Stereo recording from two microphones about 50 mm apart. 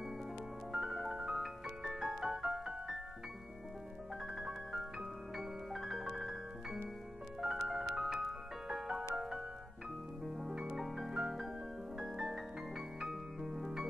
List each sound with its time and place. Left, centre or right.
0.7 s music: centre
5.3 s music: centre